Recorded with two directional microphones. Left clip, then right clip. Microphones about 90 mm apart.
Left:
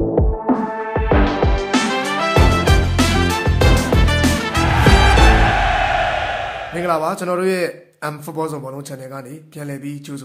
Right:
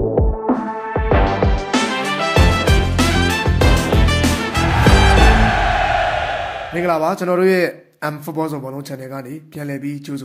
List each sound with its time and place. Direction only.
0.5 s music: centre (ahead or behind)
6.8 s speech: 20° right (ahead or behind)